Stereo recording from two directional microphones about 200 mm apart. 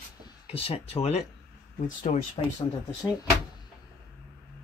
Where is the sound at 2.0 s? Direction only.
40° left (ahead or behind).